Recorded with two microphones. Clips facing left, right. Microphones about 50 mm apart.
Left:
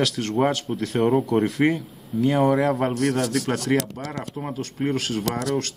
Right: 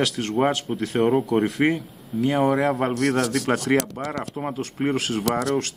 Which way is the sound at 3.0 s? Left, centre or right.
Right.